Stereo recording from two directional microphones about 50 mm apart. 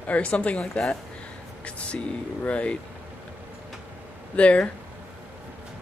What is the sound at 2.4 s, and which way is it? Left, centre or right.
Speech, left.